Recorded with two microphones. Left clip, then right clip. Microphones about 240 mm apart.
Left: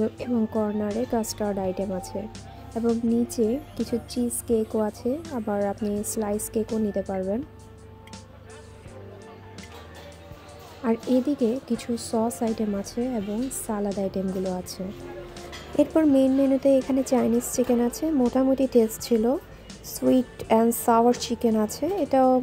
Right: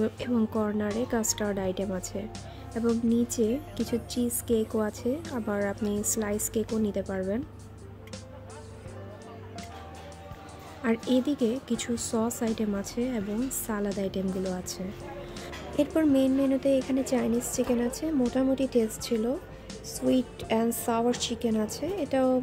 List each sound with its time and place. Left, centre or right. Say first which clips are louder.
0.0 s a woman's voice: left 2 dB; centre
10.8 s a woman's voice: left 3 dB; centre
15.7 s a woman's voice: left 5 dB; centre